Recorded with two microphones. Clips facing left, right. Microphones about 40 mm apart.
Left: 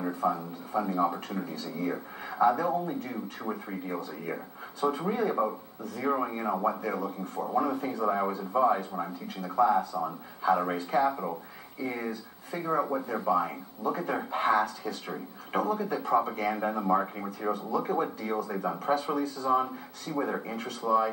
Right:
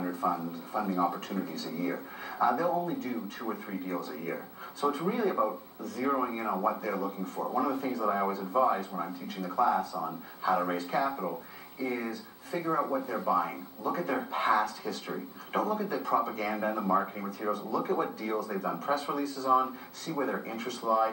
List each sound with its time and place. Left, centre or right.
0.0 s speech: centre
4.2 s speech: centre
20.5 s speech: centre